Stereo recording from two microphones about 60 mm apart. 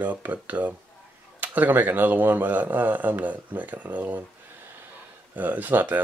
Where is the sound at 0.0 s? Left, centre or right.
Right.